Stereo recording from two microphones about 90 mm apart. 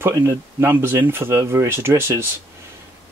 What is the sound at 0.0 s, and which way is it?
Speech, 30° right (ahead or behind).